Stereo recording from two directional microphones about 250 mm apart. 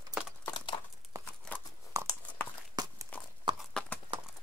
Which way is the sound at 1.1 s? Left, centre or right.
Centre.